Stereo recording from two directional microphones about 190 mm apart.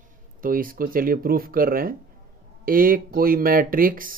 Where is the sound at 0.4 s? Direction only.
45° right (ahead or behind).